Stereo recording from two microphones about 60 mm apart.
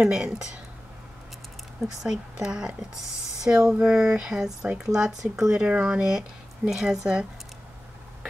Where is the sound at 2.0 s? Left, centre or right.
Centre.